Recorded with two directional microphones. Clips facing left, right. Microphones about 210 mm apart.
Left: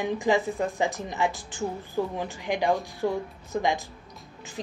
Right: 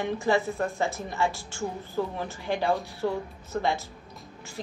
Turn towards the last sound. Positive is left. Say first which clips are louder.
# left 1 dB
turn(degrees=15)  # may be behind; listen again after turning